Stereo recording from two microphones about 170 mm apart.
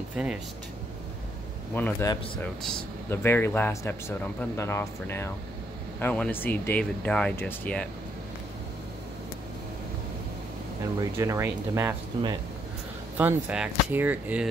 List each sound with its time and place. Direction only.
0.1 s speech: 5° right (ahead or behind)
1.8 s a man's voice: 15° left (ahead or behind)
11.0 s speech: 15° right (ahead or behind)
13.2 s speech: 10° right (ahead or behind)